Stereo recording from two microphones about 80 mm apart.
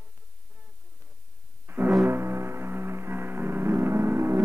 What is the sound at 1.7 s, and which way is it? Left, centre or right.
Music, right.